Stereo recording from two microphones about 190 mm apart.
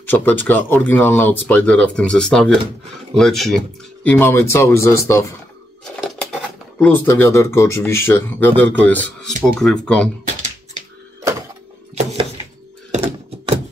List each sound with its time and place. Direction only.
0.0 s speech: 10° left (ahead or behind)
6.8 s speech: 10° left (ahead or behind)
11.9 s thunk: 35° right (ahead or behind)